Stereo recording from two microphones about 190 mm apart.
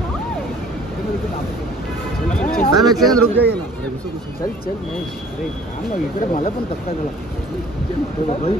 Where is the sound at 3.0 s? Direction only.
5° left (ahead or behind).